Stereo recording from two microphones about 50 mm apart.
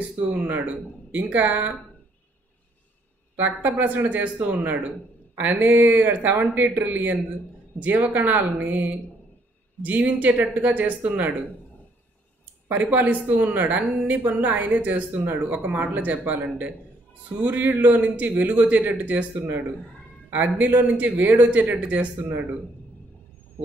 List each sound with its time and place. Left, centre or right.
0.3 s a woman's voice: right
3.3 s a woman's voice: right
12.9 s a woman's voice: right
20.2 s a woman's voice: right